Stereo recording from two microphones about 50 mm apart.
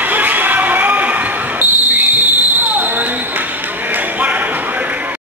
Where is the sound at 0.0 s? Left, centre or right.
Right.